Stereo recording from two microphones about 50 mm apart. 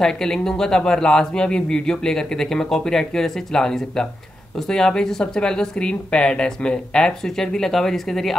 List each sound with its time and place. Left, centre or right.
0.0 s speech: centre